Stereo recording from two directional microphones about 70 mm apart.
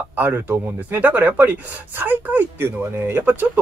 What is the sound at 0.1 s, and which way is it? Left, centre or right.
Speech, right.